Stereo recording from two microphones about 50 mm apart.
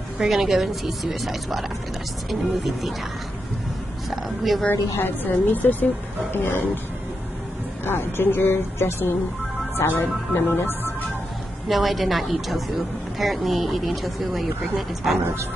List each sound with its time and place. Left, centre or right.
0.2 s a woman's voice: centre
4.1 s a sound: centre
4.9 s a woman's voice: left
7.8 s speech: left
11.7 s a woman's voice: centre